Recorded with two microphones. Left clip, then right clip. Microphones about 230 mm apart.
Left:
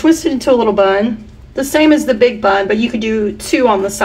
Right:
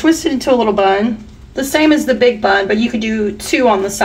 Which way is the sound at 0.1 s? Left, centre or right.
Centre.